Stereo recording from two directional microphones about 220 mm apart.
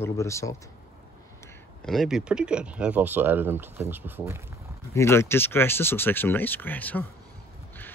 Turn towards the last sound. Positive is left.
turn(degrees=10)  # may be behind; listen again after turning